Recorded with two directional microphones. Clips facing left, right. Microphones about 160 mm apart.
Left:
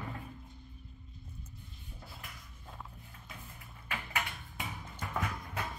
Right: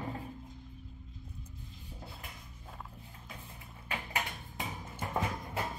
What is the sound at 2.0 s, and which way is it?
Cupboard open or close, 20° right (ahead or behind).